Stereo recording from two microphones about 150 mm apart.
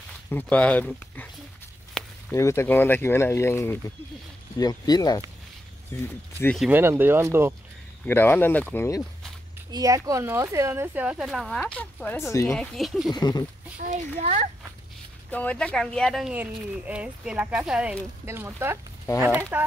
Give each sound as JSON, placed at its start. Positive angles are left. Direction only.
{"t": 0.3, "sound": "speech", "side_deg": 10}
{"t": 2.0, "sound": "a sound", "side_deg": 5}
{"t": 2.3, "sound": "speech", "side_deg": 20}
{"t": 4.6, "sound": "speech", "side_deg": 25}
{"t": 6.7, "sound": "speech", "side_deg": -15}
{"t": 8.0, "sound": "speech", "side_deg": 15}
{"t": 9.7, "sound": "speech", "side_deg": -25}
{"t": 12.3, "sound": "speech", "side_deg": 20}
{"t": 12.5, "sound": "speech", "side_deg": 0}
{"t": 13.1, "sound": "speech", "side_deg": 25}
{"t": 13.7, "sound": "a child's voice", "side_deg": -55}
{"t": 15.3, "sound": "speech", "side_deg": 10}